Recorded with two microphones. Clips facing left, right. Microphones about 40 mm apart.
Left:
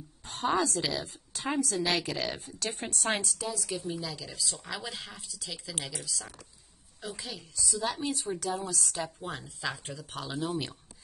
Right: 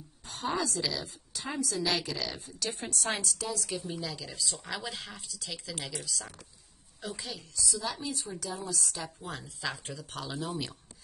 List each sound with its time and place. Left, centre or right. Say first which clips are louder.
0.3 s a woman's voice: left 4 dB; left
3.1 s speech: left 3 dB; left
3.4 s a woman's voice: left 1 dB; centre
7.5 s speech: left 3 dB; left
7.9 s a woman's voice: left 4 dB; left
8.8 s a woman's voice: left 3 dB; left
9.3 s speech: left 1 dB; centre